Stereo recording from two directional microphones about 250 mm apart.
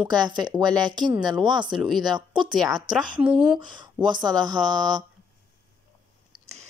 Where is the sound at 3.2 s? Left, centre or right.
Centre.